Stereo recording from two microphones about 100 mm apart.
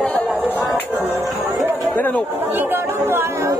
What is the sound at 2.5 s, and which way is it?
Speech, 20° right (ahead or behind).